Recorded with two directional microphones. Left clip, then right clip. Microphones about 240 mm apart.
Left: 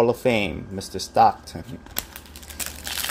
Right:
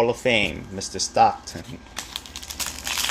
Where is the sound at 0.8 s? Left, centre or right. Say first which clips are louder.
Right 6 dB; left.